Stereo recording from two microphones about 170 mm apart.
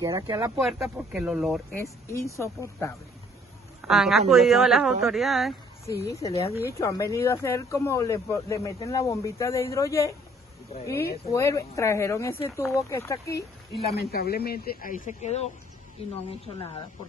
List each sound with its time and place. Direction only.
0.0 s speech: 20° right (ahead or behind)
0.6 s speech: centre (ahead or behind)
1.7 s speech: 15° left (ahead or behind)
3.8 s speech: centre (ahead or behind)
5.9 s speech: 20° left (ahead or behind)
11.3 s speech: 15° left (ahead or behind)
13.9 s speech: 65° left (ahead or behind); by 16.8 s 35° left (ahead or behind)